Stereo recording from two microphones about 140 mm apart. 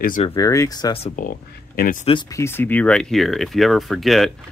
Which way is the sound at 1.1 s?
85° left.